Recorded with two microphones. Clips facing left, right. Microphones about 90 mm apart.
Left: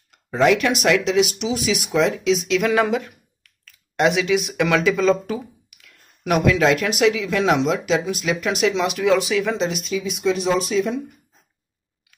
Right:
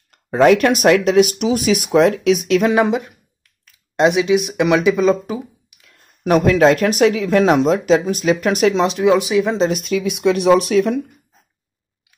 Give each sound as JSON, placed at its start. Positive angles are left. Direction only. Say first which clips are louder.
{"t": 0.1, "sound": "speech", "louder": "right 5 dB", "side_deg": -45}
{"t": 2.6, "sound": "speech", "louder": "right 4 dB", "side_deg": -25}
{"t": 8.8, "sound": "speech", "louder": "right 4 dB", "side_deg": -25}
{"t": 9.6, "sound": "speech", "louder": "right 6 dB", "side_deg": -45}
{"t": 9.8, "sound": "speech", "louder": "right 5 dB", "side_deg": -65}